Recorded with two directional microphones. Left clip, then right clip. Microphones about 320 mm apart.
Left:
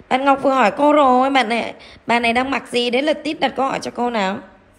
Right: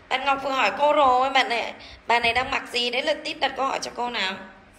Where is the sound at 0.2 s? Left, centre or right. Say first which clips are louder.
Left 8 dB; left.